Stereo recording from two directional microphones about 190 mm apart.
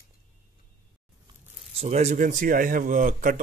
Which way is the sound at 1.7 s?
35° right (ahead or behind).